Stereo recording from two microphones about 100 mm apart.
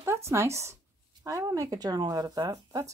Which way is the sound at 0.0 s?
25° right (ahead or behind).